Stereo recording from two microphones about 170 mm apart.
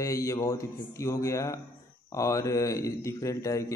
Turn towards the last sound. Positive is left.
turn(degrees=20)  # may be behind; listen again after turning